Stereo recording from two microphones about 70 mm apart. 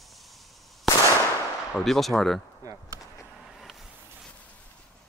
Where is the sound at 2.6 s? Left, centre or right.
Right.